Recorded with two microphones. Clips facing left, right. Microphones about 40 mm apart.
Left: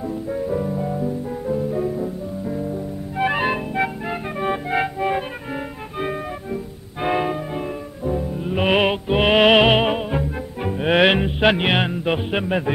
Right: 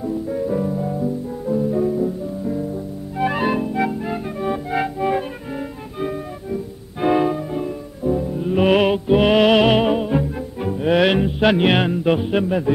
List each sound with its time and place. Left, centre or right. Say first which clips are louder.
0.0 s music: right 2 dB; centre
3.2 s music: right 1 dB; left
4.4 s music: left 2 dB; left
4.7 s music: right 2 dB; centre
6.5 s music: right 2 dB; centre
8.1 s music: right 4 dB; centre
8.6 s music: right 2 dB; left
10.0 s music: right 3 dB; centre
10.7 s music: even; left; by 12.2 s centre
12.2 s music: right 4 dB; left
12.4 s music: right 2 dB; left